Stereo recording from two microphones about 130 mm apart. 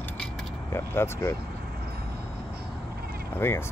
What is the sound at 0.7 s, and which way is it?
Speech, 20° left (ahead or behind).